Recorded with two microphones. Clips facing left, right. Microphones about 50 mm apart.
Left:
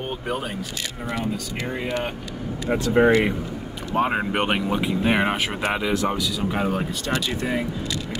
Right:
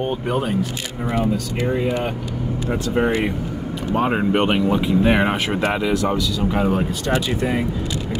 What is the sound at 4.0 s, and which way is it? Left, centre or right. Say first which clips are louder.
Speech: right 3 dB; centre.